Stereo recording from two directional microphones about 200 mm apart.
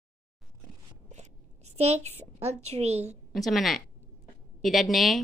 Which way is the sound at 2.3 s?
30° right (ahead or behind).